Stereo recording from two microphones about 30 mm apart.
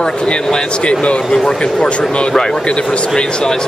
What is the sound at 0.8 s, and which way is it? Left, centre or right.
Speech, left.